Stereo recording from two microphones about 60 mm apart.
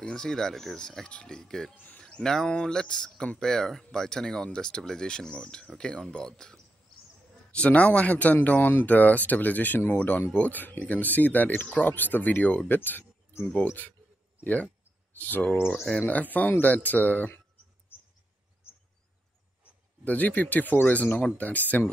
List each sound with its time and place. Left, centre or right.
0.0 s speech: centre
2.0 s a sound: centre
2.5 s speech: centre
7.5 s speech: left
20.1 s speech: left